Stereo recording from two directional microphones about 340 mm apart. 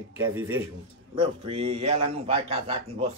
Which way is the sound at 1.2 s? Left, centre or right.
Centre.